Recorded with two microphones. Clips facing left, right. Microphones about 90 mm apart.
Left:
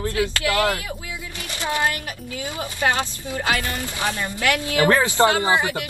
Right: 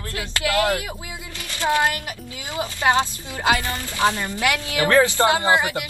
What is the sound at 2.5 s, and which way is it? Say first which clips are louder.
Speech: right 3 dB; 20° right (ahead or behind).